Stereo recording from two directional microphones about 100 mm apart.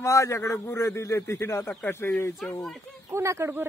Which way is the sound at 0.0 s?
30° left (ahead or behind).